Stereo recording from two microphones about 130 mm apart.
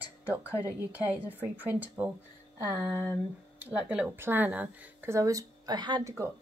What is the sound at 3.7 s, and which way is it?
Speech, 10° right (ahead or behind).